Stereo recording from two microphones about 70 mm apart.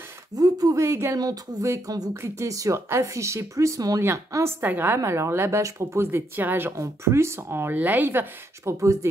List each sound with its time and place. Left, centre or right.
0.4 s speech: right
0.7 s speech: right
1.1 s a sound: right
2.2 s speech: right
4.3 s speech: right
6.8 s speech: right
8.7 s speech: right